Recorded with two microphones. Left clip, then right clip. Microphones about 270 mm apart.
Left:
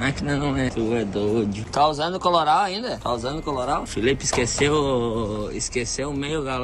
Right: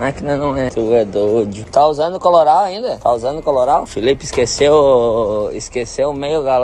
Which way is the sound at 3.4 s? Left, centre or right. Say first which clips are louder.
Right 12 dB; right.